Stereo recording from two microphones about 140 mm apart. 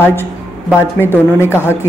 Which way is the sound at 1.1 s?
15° left (ahead or behind).